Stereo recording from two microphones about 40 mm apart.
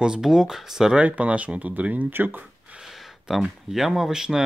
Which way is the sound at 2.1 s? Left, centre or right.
Right.